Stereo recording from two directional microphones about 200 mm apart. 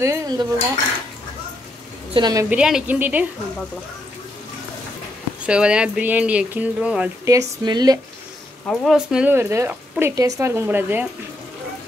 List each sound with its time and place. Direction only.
0.0 s speech: 15° right (ahead or behind)
2.1 s speech: 20° right (ahead or behind)
2.5 s speech: 5° right (ahead or behind)
5.5 s speech: 5° right (ahead or behind)
7.2 s speech: 20° right (ahead or behind)
8.6 s speech: centre (ahead or behind)